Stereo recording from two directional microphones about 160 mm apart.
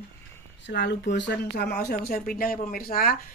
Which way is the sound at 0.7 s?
90° left.